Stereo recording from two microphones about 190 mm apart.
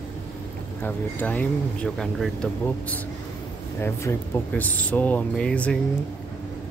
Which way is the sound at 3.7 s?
10° left (ahead or behind).